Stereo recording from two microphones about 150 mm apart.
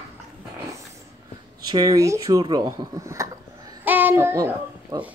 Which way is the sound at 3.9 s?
10° right (ahead or behind).